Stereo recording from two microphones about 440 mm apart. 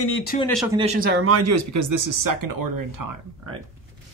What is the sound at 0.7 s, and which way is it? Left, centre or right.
Speech, centre.